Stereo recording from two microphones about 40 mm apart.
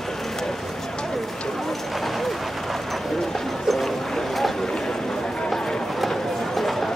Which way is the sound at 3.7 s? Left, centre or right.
Centre.